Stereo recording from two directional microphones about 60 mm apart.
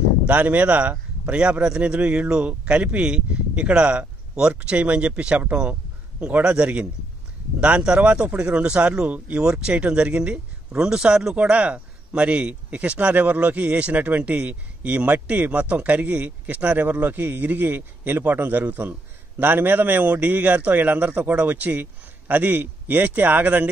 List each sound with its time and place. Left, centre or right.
0.3 s speech: right; by 11.3 s centre
11.3 s a man's voice: right